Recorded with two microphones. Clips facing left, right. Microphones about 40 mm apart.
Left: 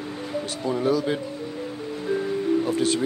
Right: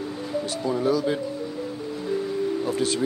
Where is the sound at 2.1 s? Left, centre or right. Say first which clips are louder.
Left 3 dB; left.